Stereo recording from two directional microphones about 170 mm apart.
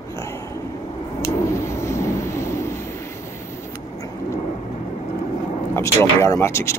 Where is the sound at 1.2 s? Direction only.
15° left (ahead or behind).